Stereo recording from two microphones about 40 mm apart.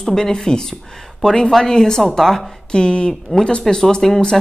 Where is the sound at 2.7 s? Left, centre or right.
Left.